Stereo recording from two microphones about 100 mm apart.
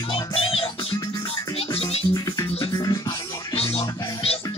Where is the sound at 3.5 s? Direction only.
80° left.